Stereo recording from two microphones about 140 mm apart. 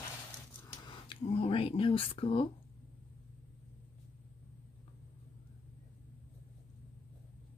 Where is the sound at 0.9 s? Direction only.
40° left (ahead or behind).